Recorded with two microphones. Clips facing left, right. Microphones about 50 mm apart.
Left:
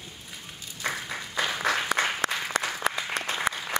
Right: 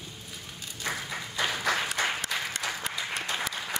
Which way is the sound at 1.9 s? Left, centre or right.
Left.